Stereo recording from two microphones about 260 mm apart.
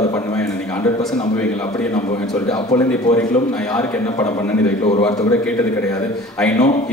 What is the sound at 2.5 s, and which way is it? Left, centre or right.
Speech, centre.